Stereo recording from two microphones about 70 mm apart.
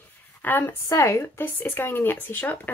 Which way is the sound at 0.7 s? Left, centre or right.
Left.